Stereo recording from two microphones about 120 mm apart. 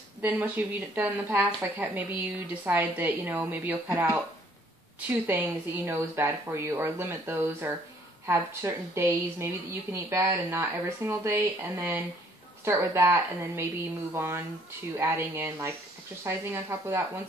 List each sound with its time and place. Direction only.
0.2 s speech: 15° right (ahead or behind)